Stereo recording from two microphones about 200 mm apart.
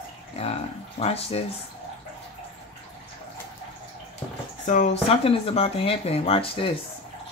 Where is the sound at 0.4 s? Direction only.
30° left (ahead or behind).